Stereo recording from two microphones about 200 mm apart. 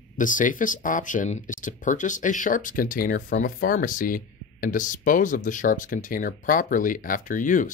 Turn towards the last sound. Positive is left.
turn(degrees=40)  # may be behind; listen again after turning